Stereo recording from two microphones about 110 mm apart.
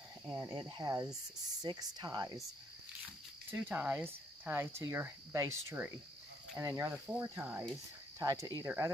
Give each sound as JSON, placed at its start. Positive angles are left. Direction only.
{"t": 0.3, "sound": "speech", "side_deg": -35}
{"t": 3.4, "sound": "speech", "side_deg": -20}
{"t": 7.3, "sound": "speech", "side_deg": -15}
{"t": 8.2, "sound": "speech", "side_deg": -25}